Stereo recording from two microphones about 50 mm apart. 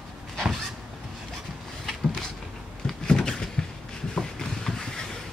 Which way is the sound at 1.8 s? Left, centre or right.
Centre.